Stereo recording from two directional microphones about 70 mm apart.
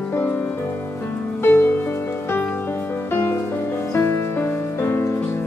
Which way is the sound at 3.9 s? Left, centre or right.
Left.